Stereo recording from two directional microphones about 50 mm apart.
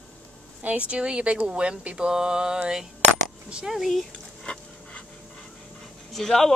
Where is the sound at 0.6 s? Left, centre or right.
Right; by 4.0 s centre.